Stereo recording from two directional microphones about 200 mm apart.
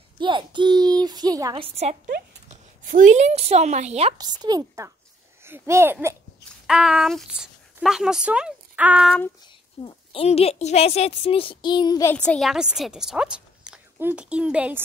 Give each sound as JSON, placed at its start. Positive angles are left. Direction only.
{"t": 0.2, "sound": "a child's voice", "side_deg": -25}
{"t": 2.8, "sound": "a woman's voice", "side_deg": -40}
{"t": 4.2, "sound": "a child's voice", "side_deg": -20}
{"t": 9.8, "sound": "a woman's voice", "side_deg": 25}